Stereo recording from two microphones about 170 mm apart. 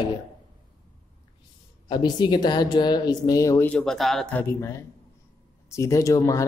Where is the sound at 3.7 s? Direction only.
5° left (ahead or behind); by 6.4 s 20° left (ahead or behind).